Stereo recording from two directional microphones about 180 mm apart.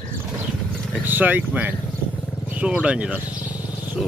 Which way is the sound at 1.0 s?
10° right (ahead or behind).